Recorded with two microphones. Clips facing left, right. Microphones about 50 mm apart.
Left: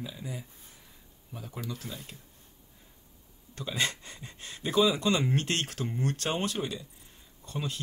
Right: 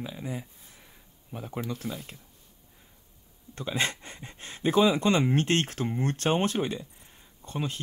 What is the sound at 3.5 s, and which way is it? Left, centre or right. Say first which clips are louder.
Speech: right 2 dB; right.